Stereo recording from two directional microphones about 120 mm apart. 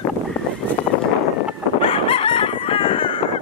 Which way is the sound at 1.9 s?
50° left (ahead or behind).